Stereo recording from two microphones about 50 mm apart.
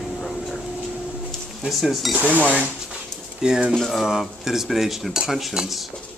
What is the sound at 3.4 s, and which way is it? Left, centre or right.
Speech, centre.